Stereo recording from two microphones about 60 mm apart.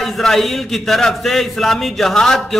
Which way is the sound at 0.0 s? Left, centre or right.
Centre.